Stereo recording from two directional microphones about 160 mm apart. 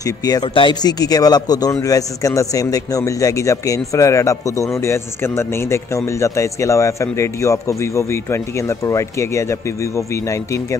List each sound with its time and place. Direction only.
0.0 s a man's voice: 25° left (ahead or behind)